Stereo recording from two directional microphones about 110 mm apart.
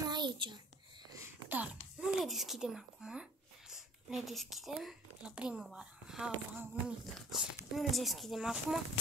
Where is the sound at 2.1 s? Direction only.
Centre (ahead or behind).